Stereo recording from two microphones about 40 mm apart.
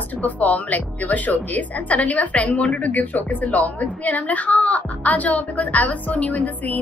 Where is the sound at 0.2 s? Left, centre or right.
Left.